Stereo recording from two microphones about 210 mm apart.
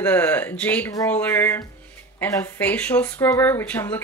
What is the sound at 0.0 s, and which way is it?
Speech, 10° left (ahead or behind).